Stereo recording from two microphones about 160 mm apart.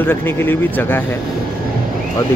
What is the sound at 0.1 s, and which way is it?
Speech, 15° left (ahead or behind).